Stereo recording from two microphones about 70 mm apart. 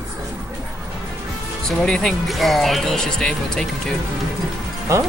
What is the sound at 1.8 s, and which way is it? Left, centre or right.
Speech, centre.